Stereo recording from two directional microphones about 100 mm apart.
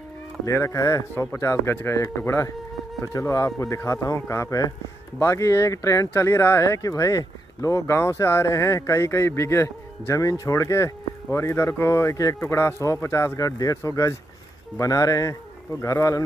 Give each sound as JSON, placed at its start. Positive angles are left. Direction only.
{"t": 0.5, "sound": "speech", "side_deg": 30}